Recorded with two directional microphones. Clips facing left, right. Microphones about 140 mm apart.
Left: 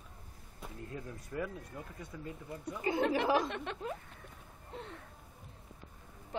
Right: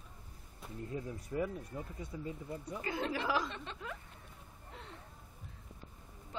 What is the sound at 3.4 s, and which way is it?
Speech, 60° left (ahead or behind).